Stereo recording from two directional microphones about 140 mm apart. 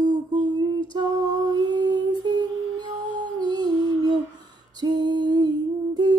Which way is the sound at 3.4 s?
30° right (ahead or behind).